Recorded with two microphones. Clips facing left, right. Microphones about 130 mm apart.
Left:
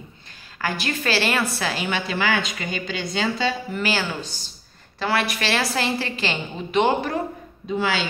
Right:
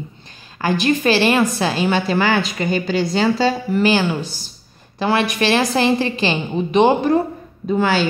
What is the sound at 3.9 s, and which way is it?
A woman's voice, 15° right (ahead or behind).